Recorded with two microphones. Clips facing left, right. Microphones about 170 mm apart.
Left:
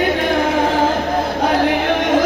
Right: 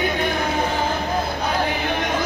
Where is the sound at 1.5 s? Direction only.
80° left.